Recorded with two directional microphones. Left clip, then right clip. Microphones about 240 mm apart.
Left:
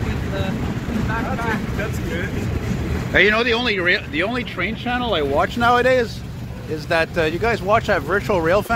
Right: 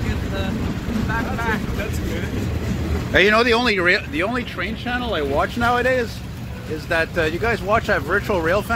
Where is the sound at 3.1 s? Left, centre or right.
Centre.